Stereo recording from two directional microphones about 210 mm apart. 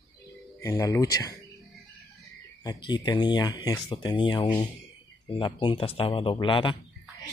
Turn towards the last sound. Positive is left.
turn(degrees=25)  # may be behind; listen again after turning